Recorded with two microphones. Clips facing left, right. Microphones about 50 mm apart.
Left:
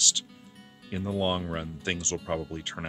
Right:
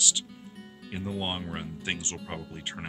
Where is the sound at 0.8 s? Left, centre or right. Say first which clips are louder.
Left 5 dB; centre.